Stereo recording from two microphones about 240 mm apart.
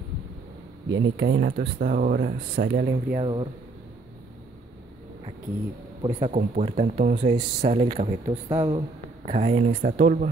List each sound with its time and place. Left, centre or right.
0.9 s speech: right
3.2 s speech: right
6.0 s speech: right
9.3 s speech: right